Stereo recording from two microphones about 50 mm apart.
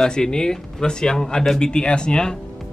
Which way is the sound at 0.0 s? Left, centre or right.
Centre.